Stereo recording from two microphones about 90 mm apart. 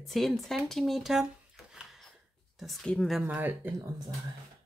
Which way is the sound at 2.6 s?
5° left (ahead or behind).